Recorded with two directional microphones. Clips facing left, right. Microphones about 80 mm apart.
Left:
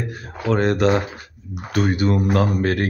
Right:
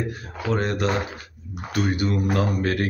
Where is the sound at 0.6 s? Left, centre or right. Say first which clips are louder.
Left 7 dB; left.